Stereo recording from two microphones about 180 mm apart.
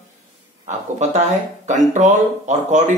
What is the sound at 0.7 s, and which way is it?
Speech, 40° right (ahead or behind).